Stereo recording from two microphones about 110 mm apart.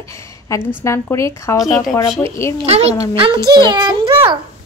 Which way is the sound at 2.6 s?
70° right (ahead or behind).